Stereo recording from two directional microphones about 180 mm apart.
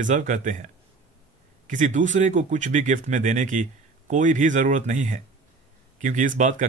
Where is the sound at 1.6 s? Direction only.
45° right (ahead or behind).